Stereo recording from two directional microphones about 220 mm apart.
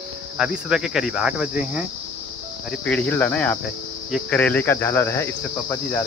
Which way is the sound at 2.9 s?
5° left (ahead or behind).